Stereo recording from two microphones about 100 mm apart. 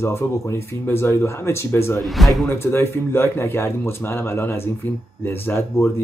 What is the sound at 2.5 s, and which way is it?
Speech, 25° left (ahead or behind).